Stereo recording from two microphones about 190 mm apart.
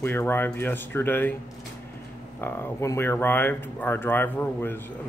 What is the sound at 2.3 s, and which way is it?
Speech, 10° left (ahead or behind).